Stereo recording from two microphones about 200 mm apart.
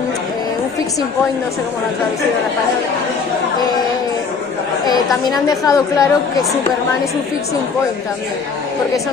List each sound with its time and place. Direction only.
5.3 s a woman's voice: 15° left (ahead or behind)